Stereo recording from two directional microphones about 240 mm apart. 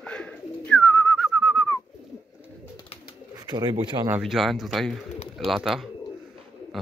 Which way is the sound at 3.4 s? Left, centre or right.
Centre.